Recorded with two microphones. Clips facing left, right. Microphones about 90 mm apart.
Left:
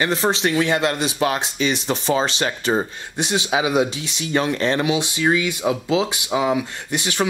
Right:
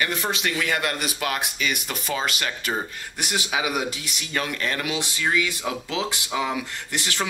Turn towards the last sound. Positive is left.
turn(degrees=20)  # may be behind; listen again after turning